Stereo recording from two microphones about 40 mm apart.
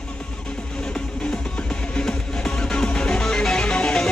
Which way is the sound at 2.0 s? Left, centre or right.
Centre.